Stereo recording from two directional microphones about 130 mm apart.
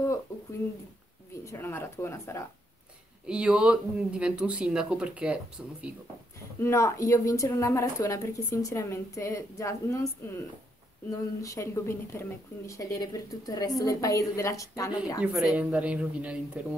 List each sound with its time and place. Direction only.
1.4 s a woman's voice: 20° left (ahead or behind)
3.3 s speech: 5° right (ahead or behind)
6.6 s a woman's voice: 20° left (ahead or behind)
15.3 s speech: 5° right (ahead or behind)